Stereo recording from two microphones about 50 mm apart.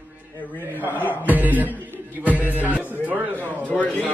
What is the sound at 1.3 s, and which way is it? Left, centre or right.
Music, right.